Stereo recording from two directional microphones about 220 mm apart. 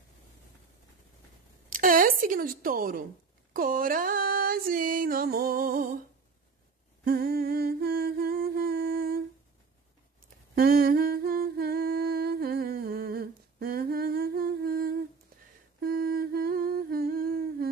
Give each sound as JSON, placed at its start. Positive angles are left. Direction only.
{"t": 1.7, "sound": "speech", "side_deg": -40}
{"t": 3.5, "sound": "music", "side_deg": -40}
{"t": 7.1, "sound": "humming", "side_deg": -45}
{"t": 10.5, "sound": "humming", "side_deg": -45}